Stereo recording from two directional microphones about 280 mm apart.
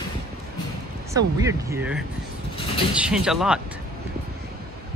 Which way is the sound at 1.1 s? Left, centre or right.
Centre.